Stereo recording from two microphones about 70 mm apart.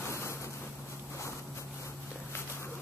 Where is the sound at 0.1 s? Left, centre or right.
Left.